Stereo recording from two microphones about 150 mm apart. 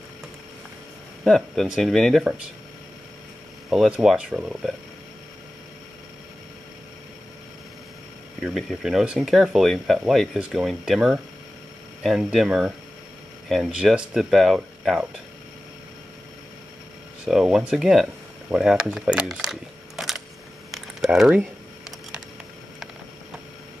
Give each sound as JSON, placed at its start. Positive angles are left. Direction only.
{"t": 1.2, "sound": "speech", "side_deg": 0}
{"t": 3.7, "sound": "speech", "side_deg": 0}
{"t": 8.4, "sound": "speech", "side_deg": 0}
{"t": 17.2, "sound": "speech", "side_deg": -5}
{"t": 20.7, "sound": "typing", "side_deg": 0}